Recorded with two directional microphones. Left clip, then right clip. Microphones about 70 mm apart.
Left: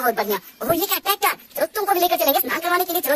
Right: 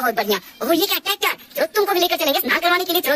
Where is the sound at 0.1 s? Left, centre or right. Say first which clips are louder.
Right 2 dB; left.